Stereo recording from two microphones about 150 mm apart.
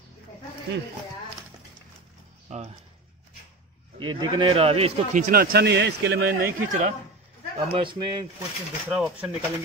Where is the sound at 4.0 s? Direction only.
30° right (ahead or behind).